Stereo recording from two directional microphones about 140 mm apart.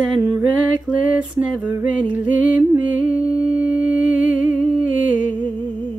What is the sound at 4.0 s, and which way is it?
Humming, 10° right (ahead or behind).